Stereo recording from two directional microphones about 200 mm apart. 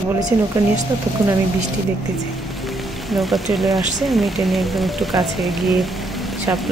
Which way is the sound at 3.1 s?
Centre (ahead or behind).